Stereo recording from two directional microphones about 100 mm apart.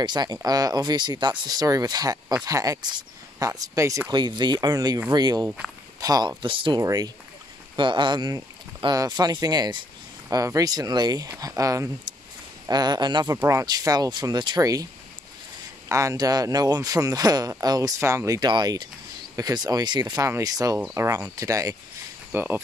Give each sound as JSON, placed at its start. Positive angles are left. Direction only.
{"t": 0.0, "sound": "speech", "side_deg": -45}
{"t": 4.1, "sound": "speech", "side_deg": -45}
{"t": 6.8, "sound": "speech", "side_deg": -35}
{"t": 7.7, "sound": "speech", "side_deg": -50}
{"t": 10.3, "sound": "speech", "side_deg": -35}
{"t": 12.6, "sound": "speech", "side_deg": -45}
{"t": 13.3, "sound": "speech", "side_deg": -30}
{"t": 13.7, "sound": "speech", "side_deg": -40}
{"t": 15.9, "sound": "speech", "side_deg": -30}
{"t": 18.4, "sound": "speech", "side_deg": -45}
{"t": 20.2, "sound": "speech", "side_deg": -30}
{"t": 22.3, "sound": "speech", "side_deg": -20}